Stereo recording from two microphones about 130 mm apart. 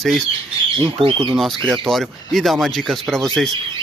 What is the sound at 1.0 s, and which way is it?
Speech, 40° right (ahead or behind).